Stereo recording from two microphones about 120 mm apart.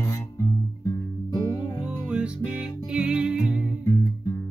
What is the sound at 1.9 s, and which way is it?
Music, 10° right (ahead or behind).